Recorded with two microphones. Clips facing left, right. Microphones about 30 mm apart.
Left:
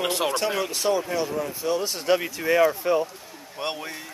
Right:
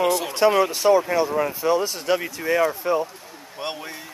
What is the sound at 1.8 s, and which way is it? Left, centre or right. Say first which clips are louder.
Speech: even; centre.